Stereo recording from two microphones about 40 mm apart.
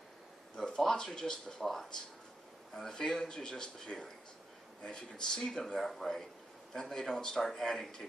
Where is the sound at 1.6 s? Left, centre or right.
Centre.